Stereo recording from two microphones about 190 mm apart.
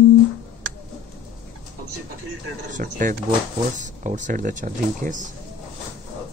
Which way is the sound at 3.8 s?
40° right (ahead or behind).